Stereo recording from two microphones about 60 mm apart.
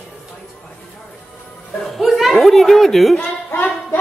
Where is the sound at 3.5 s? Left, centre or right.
Left.